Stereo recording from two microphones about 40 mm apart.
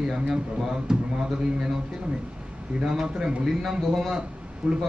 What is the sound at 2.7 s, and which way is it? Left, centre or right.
Speech, centre.